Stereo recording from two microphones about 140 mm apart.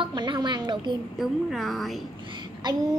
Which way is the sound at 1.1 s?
Centre (ahead or behind).